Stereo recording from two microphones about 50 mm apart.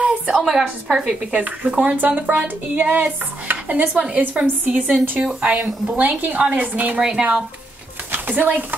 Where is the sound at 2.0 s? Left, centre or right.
Right.